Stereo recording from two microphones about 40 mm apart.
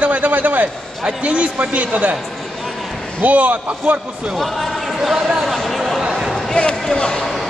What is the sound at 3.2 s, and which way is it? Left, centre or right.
Speech, right.